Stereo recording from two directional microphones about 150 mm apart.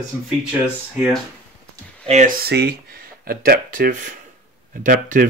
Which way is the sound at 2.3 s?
90° right.